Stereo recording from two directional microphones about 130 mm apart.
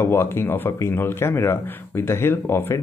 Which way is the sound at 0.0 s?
20° left (ahead or behind).